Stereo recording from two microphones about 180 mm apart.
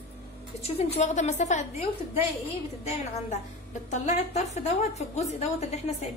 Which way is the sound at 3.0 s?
40° left (ahead or behind).